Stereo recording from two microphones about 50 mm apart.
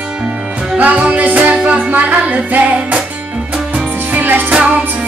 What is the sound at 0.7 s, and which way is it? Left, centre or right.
Music, right.